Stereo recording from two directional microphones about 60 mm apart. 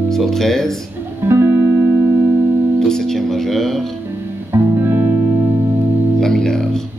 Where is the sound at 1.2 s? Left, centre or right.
Right.